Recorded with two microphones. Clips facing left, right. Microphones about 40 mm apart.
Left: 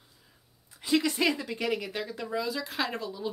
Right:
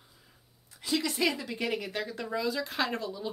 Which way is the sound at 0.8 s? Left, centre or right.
Left.